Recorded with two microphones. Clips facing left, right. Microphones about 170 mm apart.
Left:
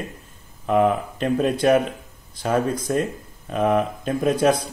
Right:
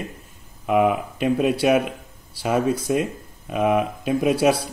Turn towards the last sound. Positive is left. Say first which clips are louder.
# even
turn(degrees=-10)  # may be behind; listen again after turning